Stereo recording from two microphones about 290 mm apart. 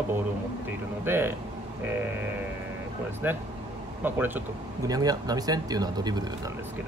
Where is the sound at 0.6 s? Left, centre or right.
Centre.